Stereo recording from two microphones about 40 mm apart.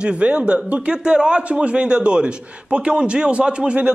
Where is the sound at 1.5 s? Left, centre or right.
Right.